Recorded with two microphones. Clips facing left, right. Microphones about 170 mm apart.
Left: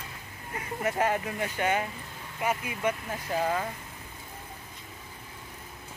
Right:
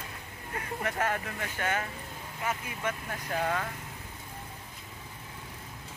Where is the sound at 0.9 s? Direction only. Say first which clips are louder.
Left 5 dB; 15° left (ahead or behind).